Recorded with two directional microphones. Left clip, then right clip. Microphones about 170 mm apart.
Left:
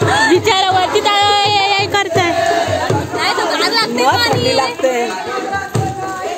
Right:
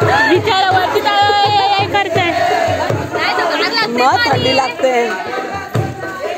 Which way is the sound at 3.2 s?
70° left (ahead or behind).